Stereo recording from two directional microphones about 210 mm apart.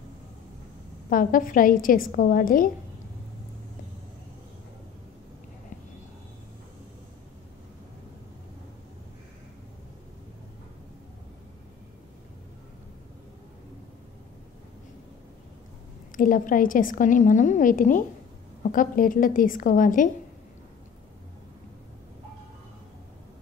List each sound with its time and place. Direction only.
1.1 s a woman's voice: 40° left (ahead or behind)
16.2 s a woman's voice: 40° left (ahead or behind)